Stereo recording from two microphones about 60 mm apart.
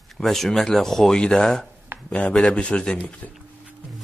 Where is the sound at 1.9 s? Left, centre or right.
Right.